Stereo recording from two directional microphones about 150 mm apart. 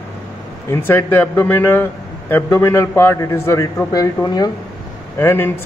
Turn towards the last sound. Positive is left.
turn(degrees=15)  # may be behind; listen again after turning